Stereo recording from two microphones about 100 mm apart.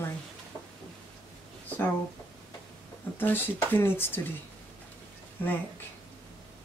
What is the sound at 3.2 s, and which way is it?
A woman's voice, 20° left (ahead or behind).